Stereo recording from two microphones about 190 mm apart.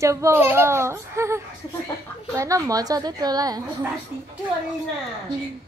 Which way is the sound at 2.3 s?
15° right (ahead or behind).